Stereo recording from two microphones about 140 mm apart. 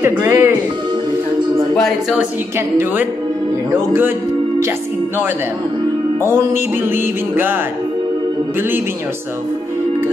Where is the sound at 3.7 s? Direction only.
15° right (ahead or behind).